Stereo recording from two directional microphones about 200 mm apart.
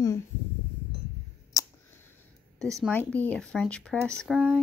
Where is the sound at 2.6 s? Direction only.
5° left (ahead or behind).